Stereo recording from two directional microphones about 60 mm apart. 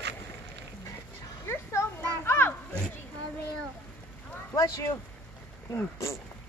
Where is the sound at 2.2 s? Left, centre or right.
Left.